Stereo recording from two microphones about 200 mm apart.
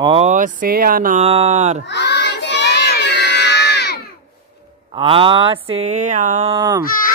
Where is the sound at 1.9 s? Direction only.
60° left (ahead or behind).